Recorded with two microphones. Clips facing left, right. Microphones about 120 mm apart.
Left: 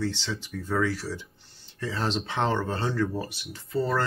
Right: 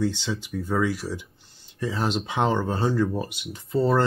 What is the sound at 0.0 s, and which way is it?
Speech, 15° right (ahead or behind).